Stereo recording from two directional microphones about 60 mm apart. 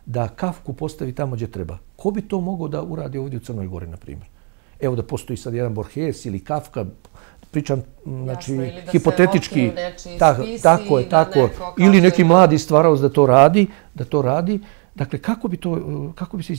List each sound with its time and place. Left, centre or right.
0.1 s speech: right